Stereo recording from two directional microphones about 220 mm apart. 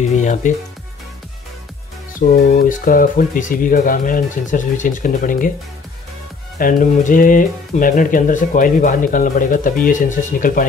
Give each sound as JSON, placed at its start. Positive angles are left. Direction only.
{"t": 0.1, "sound": "speech", "side_deg": 35}
{"t": 2.1, "sound": "speech", "side_deg": 40}
{"t": 6.6, "sound": "speech", "side_deg": 35}